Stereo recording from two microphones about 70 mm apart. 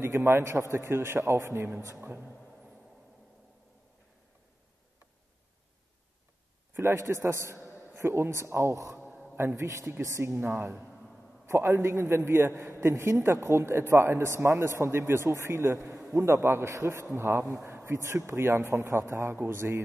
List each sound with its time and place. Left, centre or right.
0.0 s speech: right
6.7 s a sound: right
7.2 s speech: right
7.6 s a sound: left
7.9 s speech: right
9.1 s music: centre
9.4 s a woman's voice: right
10.9 s a sound: centre
11.4 s speech: right